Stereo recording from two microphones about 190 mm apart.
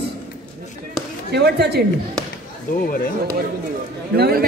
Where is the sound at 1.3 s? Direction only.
60° right (ahead or behind).